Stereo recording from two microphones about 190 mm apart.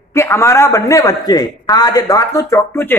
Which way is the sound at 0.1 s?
15° left (ahead or behind).